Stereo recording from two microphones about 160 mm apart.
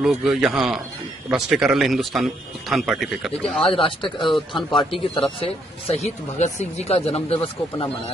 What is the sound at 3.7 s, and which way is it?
Speech, 30° left (ahead or behind).